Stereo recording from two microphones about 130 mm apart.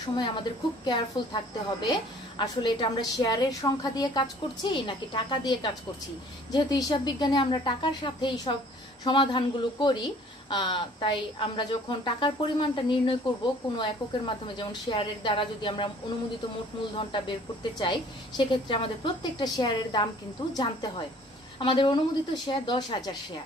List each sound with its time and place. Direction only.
0.0 s speech: 35° left (ahead or behind)
17.7 s speech: 35° left (ahead or behind)